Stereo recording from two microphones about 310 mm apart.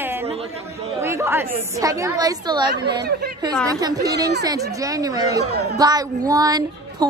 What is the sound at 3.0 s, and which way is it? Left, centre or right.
Speech, right.